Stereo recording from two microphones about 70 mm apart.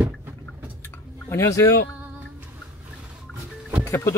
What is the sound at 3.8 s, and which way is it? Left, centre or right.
Speech, left.